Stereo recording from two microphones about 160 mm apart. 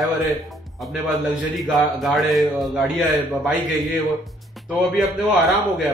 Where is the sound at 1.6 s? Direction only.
Centre (ahead or behind).